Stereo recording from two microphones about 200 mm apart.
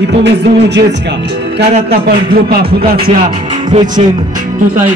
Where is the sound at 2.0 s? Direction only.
50° right (ahead or behind).